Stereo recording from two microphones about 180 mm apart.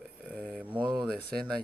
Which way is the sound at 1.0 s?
5° left (ahead or behind).